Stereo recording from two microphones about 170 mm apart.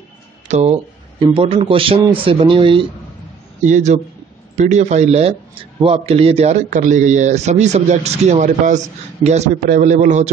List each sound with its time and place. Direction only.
0.5 s a man's voice: 40° right (ahead or behind)
3.6 s a man's voice: 45° right (ahead or behind)